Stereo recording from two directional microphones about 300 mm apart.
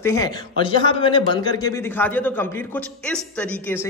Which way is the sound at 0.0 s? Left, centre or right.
Centre.